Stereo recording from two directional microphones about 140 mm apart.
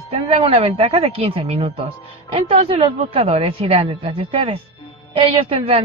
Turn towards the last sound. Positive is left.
turn(degrees=-40)  # may be behind; listen again after turning